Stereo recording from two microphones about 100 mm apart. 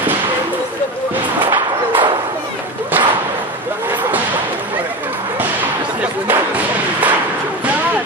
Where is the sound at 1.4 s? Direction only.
55° right (ahead or behind).